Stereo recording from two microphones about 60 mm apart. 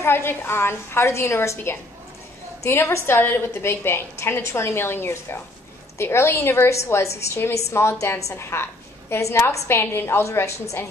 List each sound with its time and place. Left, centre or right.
0.0 s a woman's voice: left
10.2 s a woman's voice: left